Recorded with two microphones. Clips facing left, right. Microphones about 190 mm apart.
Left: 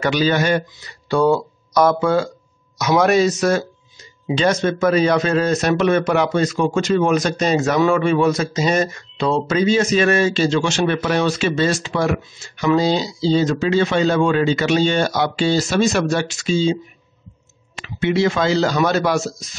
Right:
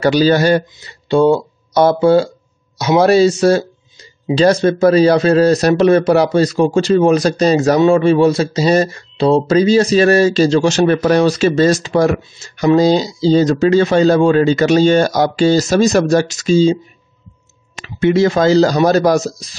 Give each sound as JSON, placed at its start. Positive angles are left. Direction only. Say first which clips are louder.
{"t": 0.0, "sound": "speech", "louder": "right 6 dB", "side_deg": -35}
{"t": 17.7, "sound": "speech", "louder": "right 6 dB", "side_deg": -40}